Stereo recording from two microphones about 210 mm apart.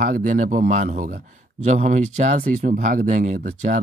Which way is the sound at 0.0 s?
40° right (ahead or behind).